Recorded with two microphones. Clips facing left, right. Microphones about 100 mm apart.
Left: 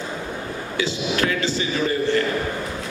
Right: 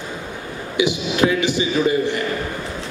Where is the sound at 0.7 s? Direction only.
15° right (ahead or behind).